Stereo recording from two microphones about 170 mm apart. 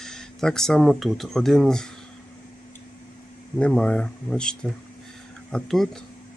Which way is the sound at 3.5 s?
5° left (ahead or behind).